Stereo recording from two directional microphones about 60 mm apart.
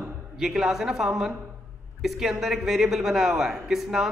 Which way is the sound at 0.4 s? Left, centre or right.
Centre.